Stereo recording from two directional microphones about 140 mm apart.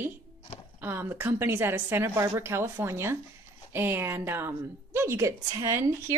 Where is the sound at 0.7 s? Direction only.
15° right (ahead or behind).